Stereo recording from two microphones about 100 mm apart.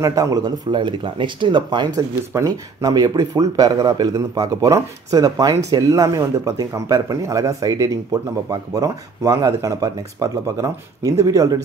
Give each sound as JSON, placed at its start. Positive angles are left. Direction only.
{"t": 0.0, "sound": "speech", "side_deg": -35}
{"t": 2.4, "sound": "speech", "side_deg": -35}